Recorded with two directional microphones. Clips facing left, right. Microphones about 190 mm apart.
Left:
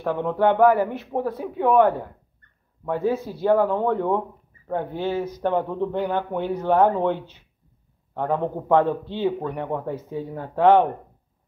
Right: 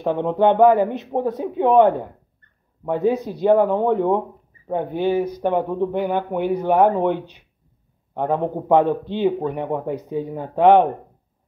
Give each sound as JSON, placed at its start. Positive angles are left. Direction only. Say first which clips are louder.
{"t": 0.0, "sound": "speech", "louder": "right 3 dB", "side_deg": -20}